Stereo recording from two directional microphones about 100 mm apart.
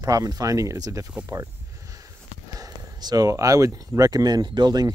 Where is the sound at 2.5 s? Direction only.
40° right (ahead or behind).